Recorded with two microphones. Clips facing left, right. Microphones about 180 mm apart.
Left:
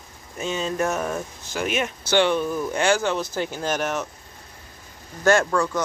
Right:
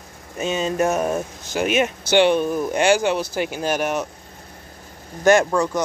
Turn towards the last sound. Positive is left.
turn(degrees=-20)  # may be behind; listen again after turning